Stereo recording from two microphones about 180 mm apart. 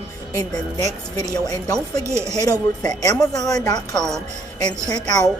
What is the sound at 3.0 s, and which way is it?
A woman's voice, 20° left (ahead or behind).